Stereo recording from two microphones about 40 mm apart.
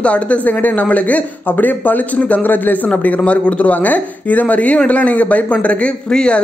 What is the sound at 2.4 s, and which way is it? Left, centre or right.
Speech, left.